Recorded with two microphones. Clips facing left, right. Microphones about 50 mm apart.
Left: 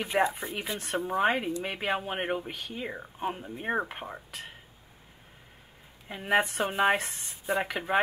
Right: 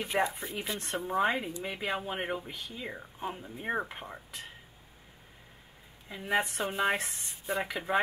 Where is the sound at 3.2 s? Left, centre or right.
Left.